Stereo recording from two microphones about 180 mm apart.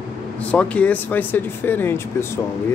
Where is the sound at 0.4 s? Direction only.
5° left (ahead or behind).